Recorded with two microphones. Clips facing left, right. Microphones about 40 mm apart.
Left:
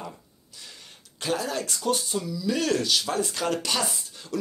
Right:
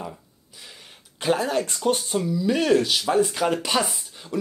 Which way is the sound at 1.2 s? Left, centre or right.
Right.